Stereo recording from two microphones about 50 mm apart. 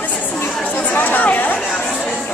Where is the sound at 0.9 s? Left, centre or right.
Left.